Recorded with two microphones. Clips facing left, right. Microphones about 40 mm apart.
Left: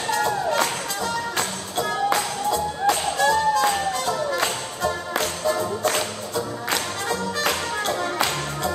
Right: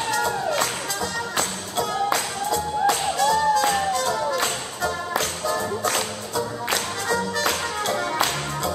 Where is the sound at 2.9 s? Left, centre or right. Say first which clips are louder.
Left 3 dB; centre.